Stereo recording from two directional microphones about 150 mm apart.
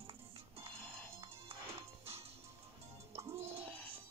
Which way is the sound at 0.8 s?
5° left (ahead or behind).